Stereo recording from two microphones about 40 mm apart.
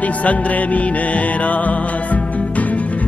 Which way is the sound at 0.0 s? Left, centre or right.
Left.